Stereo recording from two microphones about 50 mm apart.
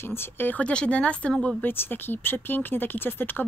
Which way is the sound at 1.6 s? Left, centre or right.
Left.